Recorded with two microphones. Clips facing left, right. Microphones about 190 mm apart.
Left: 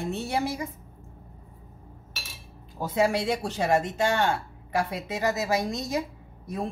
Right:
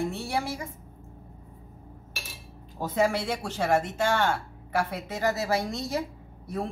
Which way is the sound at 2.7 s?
10° left (ahead or behind).